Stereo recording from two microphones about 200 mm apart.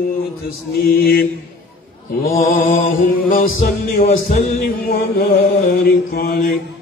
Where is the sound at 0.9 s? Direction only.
50° left (ahead or behind).